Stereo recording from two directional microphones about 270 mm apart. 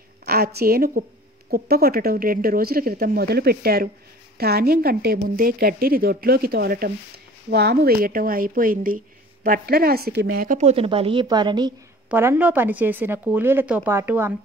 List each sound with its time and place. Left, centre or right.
0.2 s speech: right; by 14.3 s centre